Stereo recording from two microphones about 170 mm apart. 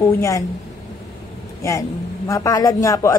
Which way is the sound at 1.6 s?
15° left (ahead or behind).